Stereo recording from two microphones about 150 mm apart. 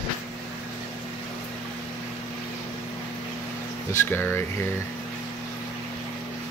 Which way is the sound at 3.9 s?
15° left (ahead or behind).